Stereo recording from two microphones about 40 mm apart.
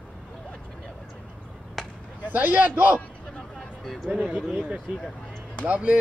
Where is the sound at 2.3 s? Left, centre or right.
Right.